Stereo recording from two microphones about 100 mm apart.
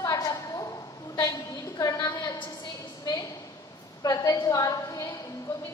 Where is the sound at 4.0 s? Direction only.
35° left (ahead or behind).